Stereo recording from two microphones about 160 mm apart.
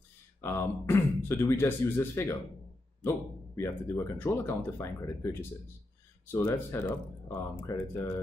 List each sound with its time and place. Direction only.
0.4 s speech: 15° left (ahead or behind)
3.5 s speech: 15° left (ahead or behind)